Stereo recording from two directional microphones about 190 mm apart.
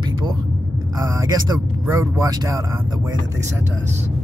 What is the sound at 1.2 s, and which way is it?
Speech, 20° right (ahead or behind).